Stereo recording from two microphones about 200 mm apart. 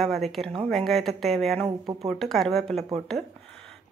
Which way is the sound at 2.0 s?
Centre (ahead or behind).